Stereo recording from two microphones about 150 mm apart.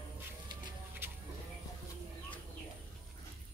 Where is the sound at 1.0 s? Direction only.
15° right (ahead or behind).